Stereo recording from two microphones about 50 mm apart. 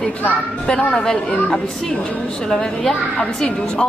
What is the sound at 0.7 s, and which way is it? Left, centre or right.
A woman's voice, centre.